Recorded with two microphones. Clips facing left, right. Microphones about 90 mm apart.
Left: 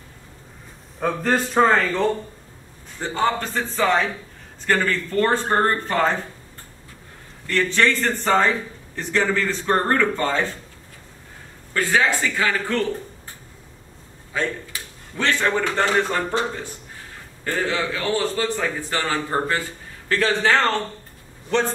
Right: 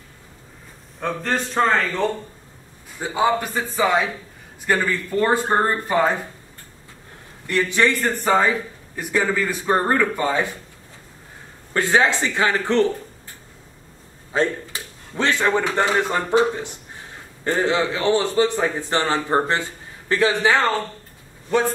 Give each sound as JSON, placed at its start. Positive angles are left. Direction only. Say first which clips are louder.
{"t": 0.9, "sound": "a man's voice", "louder": "left 3 dB", "side_deg": 5}
{"t": 3.0, "sound": "a man's voice", "louder": "right 2 dB", "side_deg": -10}
{"t": 7.4, "sound": "a man's voice", "louder": "even", "side_deg": -15}
{"t": 11.7, "sound": "a man's voice", "louder": "right 2 dB", "side_deg": -25}
{"t": 14.3, "sound": "a man's voice", "louder": "right 4 dB", "side_deg": -30}